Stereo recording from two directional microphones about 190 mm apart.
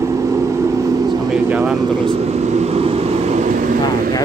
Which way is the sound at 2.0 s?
35° right (ahead or behind).